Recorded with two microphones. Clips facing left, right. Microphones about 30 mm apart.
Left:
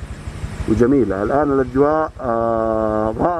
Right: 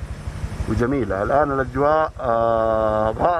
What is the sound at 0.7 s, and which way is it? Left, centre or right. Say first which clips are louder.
Speech: left 7 dB; left.